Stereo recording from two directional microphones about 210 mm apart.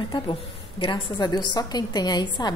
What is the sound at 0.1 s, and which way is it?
A woman's voice, 25° left (ahead or behind).